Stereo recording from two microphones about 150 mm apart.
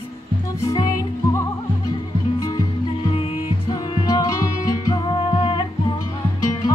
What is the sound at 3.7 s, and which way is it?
Music, 30° left (ahead or behind).